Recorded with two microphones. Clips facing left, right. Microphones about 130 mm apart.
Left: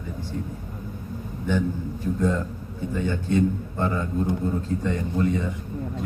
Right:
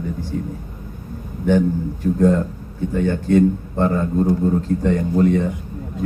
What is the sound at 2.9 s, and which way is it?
Speech, 65° right (ahead or behind).